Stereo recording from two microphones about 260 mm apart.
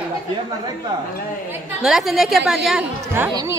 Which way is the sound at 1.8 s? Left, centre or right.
Centre.